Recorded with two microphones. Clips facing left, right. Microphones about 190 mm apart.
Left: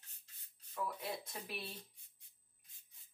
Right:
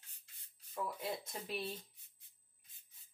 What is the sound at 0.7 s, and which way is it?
Speech, 25° right (ahead or behind).